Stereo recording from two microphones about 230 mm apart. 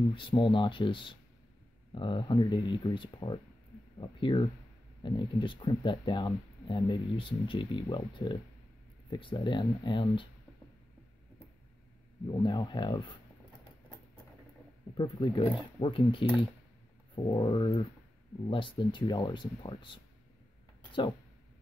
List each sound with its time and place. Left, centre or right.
0.1 s speech: left
12.4 s speech: centre
15.0 s speech: left